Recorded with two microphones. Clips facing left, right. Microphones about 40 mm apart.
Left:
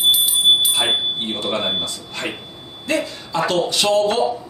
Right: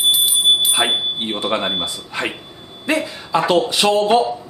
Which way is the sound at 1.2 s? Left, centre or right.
Centre.